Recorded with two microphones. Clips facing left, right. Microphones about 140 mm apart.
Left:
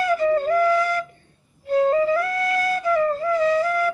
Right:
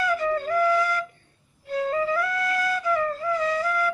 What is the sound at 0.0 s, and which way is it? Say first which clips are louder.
Flute: left 5 dB; 40° left (ahead or behind).